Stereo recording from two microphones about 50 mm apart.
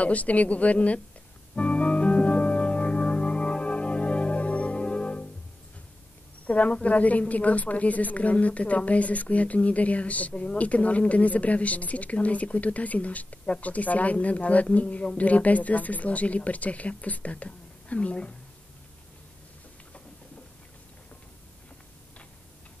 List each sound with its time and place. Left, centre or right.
0.0 s a woman's voice: left
1.5 s organ: left
6.4 s a woman's voice: left